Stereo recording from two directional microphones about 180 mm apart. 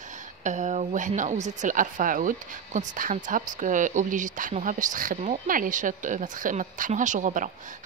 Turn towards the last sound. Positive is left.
turn(degrees=-45)  # may be behind; listen again after turning